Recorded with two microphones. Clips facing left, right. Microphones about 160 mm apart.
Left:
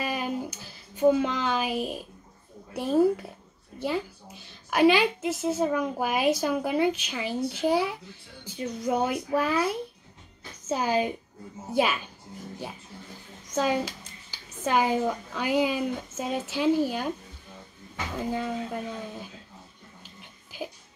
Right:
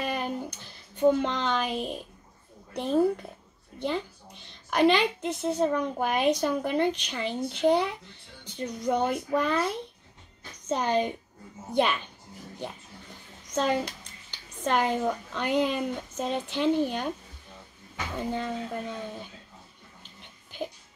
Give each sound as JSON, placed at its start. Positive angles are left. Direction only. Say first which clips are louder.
{"t": 0.0, "sound": "a sound", "louder": "left 1 dB", "side_deg": 5}
{"t": 2.7, "sound": "a woman's voice", "louder": "left 2 dB", "side_deg": 5}
{"t": 18.1, "sound": "a woman's voice", "louder": "left 1 dB", "side_deg": 5}